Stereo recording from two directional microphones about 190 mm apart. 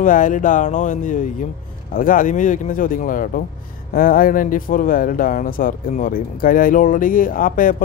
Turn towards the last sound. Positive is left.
turn(degrees=45)  # may be behind; listen again after turning